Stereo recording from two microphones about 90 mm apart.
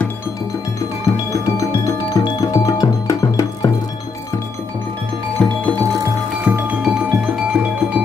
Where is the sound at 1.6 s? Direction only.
35° left (ahead or behind).